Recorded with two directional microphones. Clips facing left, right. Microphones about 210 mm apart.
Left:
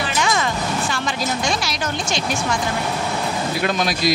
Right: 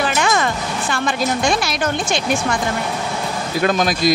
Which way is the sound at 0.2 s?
55° right (ahead or behind).